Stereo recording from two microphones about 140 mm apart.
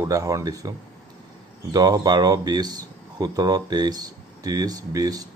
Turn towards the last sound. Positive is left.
turn(degrees=-25)  # may be behind; listen again after turning